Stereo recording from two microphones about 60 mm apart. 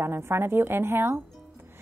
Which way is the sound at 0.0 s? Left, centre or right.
Right.